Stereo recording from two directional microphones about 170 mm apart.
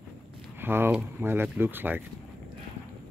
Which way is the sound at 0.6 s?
15° right (ahead or behind).